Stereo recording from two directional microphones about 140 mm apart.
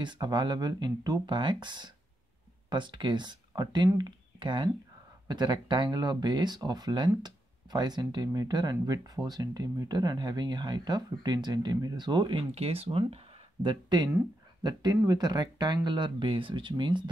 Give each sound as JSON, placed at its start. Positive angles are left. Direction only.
{"t": 0.0, "sound": "speech", "side_deg": -30}